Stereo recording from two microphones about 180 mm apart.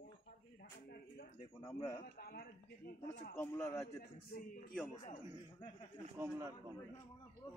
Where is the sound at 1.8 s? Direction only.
30° left (ahead or behind).